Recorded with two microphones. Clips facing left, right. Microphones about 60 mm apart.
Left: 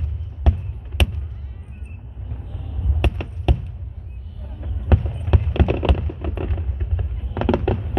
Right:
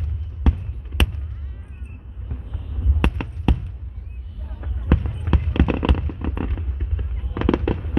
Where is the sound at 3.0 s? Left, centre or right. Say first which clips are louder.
Right 2 dB; right.